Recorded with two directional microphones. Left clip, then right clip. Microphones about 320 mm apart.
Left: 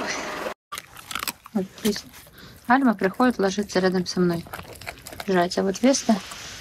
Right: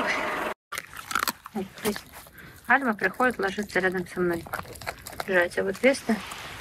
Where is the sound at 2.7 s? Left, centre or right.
Centre.